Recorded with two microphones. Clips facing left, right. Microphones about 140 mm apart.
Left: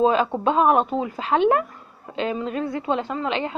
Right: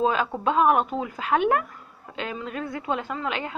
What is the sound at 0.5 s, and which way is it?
Speech, 30° left (ahead or behind).